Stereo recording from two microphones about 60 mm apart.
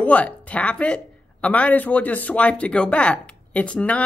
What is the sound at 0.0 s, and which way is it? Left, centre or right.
Speech, left.